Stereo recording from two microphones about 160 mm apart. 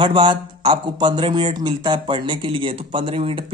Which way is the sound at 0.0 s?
30° right (ahead or behind).